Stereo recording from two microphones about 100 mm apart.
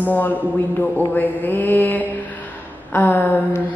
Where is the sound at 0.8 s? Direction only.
20° left (ahead or behind).